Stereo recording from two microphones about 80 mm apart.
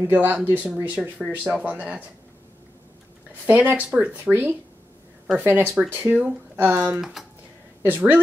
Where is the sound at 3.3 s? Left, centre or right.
Right.